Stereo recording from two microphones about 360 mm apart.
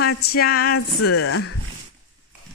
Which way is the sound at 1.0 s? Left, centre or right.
Left.